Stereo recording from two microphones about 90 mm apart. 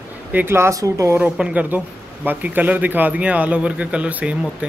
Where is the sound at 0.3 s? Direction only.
25° right (ahead or behind).